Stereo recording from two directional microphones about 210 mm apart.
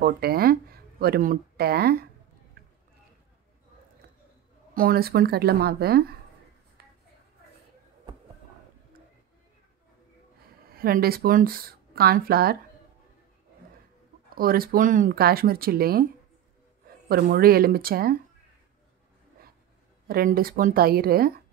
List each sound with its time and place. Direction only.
0.0 s speech: 50° right (ahead or behind)
4.7 s speech: 45° right (ahead or behind)
6.8 s a sound: 50° right (ahead or behind)
10.6 s speech: 45° right (ahead or behind)
14.3 s speech: 45° right (ahead or behind)
20.1 s speech: 45° right (ahead or behind)